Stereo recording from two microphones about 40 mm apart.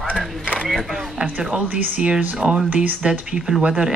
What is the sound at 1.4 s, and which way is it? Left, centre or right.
Speech, right.